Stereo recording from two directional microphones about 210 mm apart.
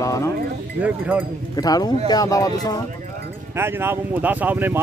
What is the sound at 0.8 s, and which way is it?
Speech, 5° right (ahead or behind).